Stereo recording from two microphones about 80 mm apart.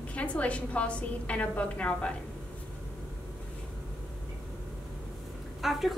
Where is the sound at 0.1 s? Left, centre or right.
Centre.